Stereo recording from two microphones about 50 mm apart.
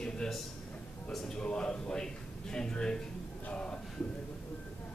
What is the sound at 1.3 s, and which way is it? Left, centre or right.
A man's voice, centre.